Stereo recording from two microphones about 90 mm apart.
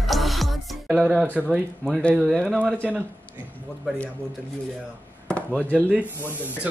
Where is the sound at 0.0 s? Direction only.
Centre (ahead or behind).